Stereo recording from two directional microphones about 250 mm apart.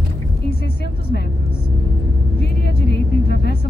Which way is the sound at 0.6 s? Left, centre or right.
Left.